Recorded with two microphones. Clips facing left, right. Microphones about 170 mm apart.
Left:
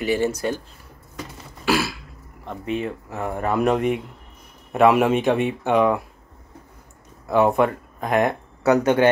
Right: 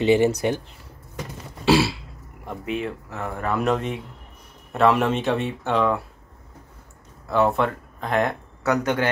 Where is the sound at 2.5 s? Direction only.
Centre (ahead or behind).